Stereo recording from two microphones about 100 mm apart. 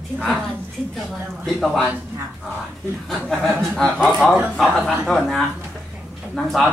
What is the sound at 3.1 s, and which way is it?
Speech, centre (ahead or behind).